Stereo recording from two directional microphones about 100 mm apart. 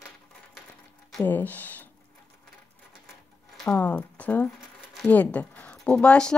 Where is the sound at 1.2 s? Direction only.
15° left (ahead or behind).